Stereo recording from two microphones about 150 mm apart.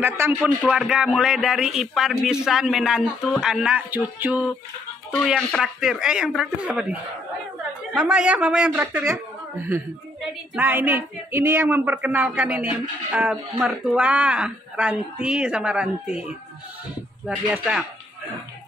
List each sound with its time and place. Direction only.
0.0 s speech: 15° right (ahead or behind)
0.7 s speech: 5° right (ahead or behind)